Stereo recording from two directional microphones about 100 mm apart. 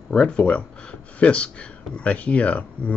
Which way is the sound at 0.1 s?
10° left (ahead or behind).